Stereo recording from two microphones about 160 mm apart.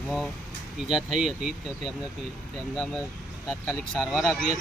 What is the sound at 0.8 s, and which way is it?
Speech, centre (ahead or behind).